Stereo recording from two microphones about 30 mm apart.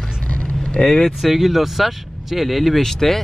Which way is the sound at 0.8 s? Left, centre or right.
Left.